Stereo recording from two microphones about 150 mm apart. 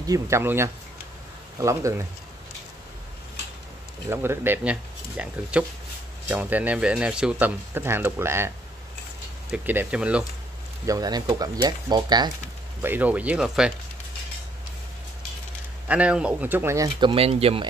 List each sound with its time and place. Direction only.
0.0 s speech: 20° right (ahead or behind)
4.1 s speech: 15° right (ahead or behind)
9.5 s speech: 10° right (ahead or behind)
10.9 s speech: 25° right (ahead or behind)
12.8 s speech: 10° right (ahead or behind)
15.9 s speech: 10° right (ahead or behind)
17.1 s speech: 40° right (ahead or behind)